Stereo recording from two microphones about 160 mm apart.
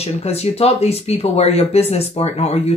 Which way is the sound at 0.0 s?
40° left (ahead or behind).